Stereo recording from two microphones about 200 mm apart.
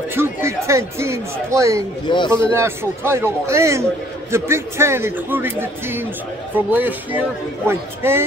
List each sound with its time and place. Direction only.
0.1 s speech: 10° right (ahead or behind)
2.0 s speech: 25° left (ahead or behind)
2.5 s speech: 10° right (ahead or behind)